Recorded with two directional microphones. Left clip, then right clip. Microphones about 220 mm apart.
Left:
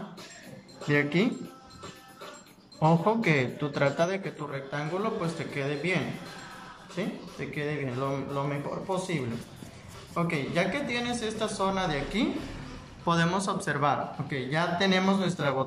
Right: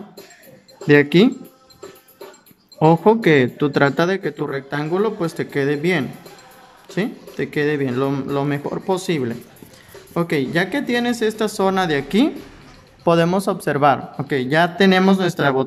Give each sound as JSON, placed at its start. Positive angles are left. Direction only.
{"t": 0.8, "sound": "speech", "side_deg": -45}
{"t": 2.8, "sound": "speech", "side_deg": -45}